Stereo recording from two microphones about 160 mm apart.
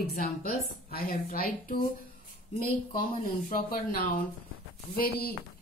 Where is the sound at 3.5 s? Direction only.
65° left (ahead or behind).